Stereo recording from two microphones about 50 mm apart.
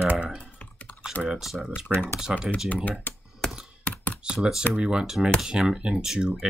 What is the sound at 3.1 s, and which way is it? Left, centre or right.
Computer keyboard, left.